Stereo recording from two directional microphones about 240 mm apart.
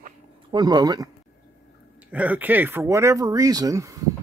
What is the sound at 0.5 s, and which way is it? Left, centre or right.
Speech, centre.